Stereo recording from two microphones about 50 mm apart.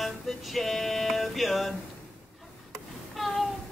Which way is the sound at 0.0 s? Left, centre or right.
Centre.